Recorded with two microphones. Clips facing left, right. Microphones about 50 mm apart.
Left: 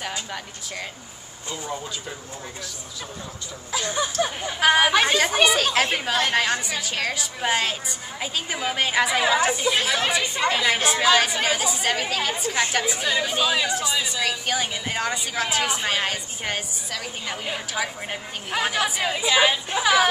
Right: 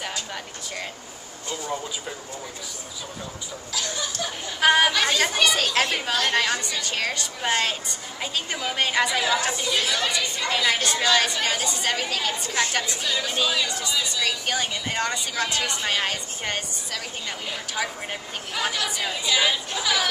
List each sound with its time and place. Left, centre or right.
3.7 s a woman's voice: left
4.6 s a woman's voice: centre
4.9 s a woman's voice: centre
5.2 s a woman's voice: centre
10.2 s a woman's voice: left
10.5 s a woman's voice: centre
13.0 s a woman's voice: centre
18.6 s a woman's voice: centre